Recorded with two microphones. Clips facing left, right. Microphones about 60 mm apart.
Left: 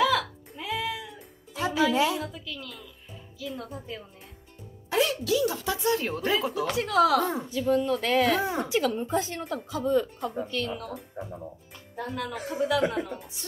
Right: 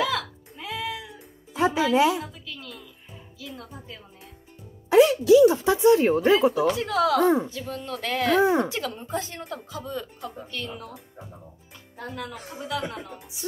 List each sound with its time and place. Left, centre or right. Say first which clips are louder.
0.6 s music: left 1 dB; centre
1.5 s music: right 3 dB; right
2.5 s music: even; centre
3.4 s a woman's voice: left 4 dB; centre
4.8 s a woman's voice: right 9 dB; centre
6.8 s a woman's voice: left 2 dB; centre
7.2 s a woman's voice: right 7 dB; right
7.6 s speech: left 7 dB; centre
8.4 s a woman's voice: right 8 dB; right
8.6 s a woman's voice: left 5 dB; centre
9.8 s speech: left 10 dB; centre
10.4 s a woman's voice: left 5 dB; centre
12.0 s a woman's voice: left 3 dB; centre